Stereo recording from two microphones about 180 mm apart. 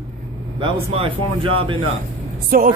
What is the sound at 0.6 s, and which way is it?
Speech, 30° right (ahead or behind).